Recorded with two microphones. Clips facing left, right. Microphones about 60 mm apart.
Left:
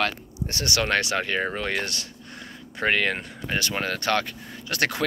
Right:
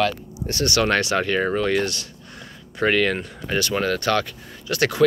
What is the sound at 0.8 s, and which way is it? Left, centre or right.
Speech, centre.